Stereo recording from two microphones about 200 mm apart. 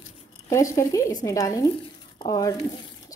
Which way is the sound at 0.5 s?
15° left (ahead or behind).